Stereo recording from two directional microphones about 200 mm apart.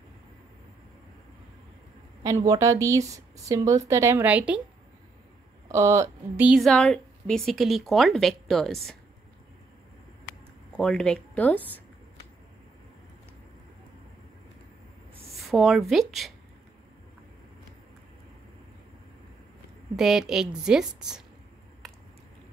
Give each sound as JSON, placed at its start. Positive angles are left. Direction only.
{"t": 2.2, "sound": "speech", "side_deg": -15}
{"t": 5.7, "sound": "a woman's voice", "side_deg": -15}
{"t": 10.7, "sound": "speech", "side_deg": 5}
{"t": 15.4, "sound": "a woman's voice", "side_deg": 0}
{"t": 20.0, "sound": "a woman's voice", "side_deg": 0}
{"t": 21.8, "sound": "a sound", "side_deg": 0}